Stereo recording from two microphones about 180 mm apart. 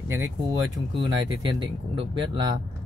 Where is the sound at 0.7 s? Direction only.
25° right (ahead or behind).